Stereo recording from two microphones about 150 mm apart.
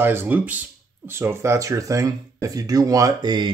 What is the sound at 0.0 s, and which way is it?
Speech, 15° right (ahead or behind).